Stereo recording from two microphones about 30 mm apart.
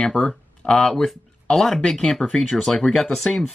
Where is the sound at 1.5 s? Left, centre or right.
Centre.